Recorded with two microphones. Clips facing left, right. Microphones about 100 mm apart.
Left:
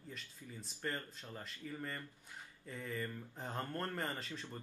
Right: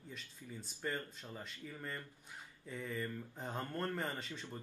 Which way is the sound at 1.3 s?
Centre (ahead or behind).